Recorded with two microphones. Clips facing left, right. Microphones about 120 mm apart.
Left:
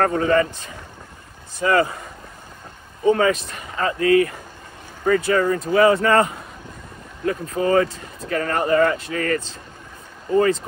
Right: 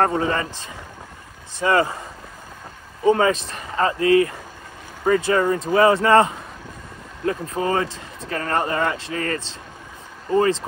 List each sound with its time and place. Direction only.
0.0 s speech: 25° right (ahead or behind)
1.6 s a man's voice: 30° right (ahead or behind)
3.1 s a man's voice: 30° right (ahead or behind)